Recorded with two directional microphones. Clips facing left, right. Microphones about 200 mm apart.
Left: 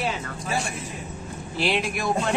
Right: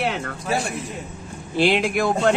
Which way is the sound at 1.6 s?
60° right (ahead or behind).